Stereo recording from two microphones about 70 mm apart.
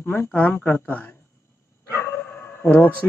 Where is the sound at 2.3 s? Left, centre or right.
Left.